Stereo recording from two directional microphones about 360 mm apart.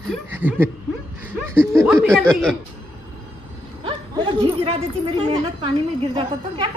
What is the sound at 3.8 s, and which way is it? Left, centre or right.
A woman's voice, centre.